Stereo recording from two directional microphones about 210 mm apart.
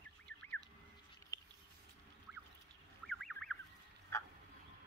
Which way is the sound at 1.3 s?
15° left (ahead or behind).